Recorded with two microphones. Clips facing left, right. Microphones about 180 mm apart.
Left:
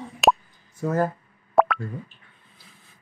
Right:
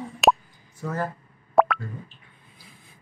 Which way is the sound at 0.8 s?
40° left (ahead or behind).